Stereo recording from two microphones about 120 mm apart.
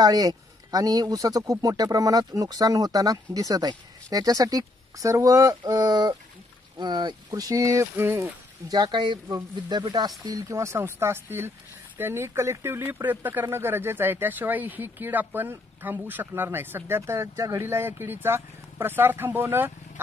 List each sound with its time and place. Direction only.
0.0 s speech: 35° right (ahead or behind)
8.6 s speech: 35° right (ahead or behind); by 19.7 s 20° right (ahead or behind)